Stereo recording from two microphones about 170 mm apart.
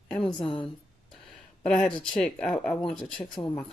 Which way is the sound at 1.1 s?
5° left (ahead or behind).